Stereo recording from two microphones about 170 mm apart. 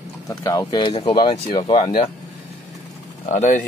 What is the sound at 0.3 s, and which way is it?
Speech, 20° left (ahead or behind).